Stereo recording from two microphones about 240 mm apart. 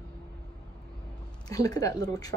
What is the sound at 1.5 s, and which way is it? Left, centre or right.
Speech, centre.